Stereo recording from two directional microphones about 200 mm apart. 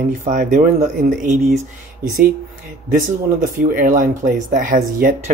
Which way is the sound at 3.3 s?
40° right (ahead or behind).